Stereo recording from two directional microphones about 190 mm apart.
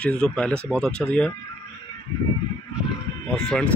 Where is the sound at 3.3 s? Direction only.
5° left (ahead or behind).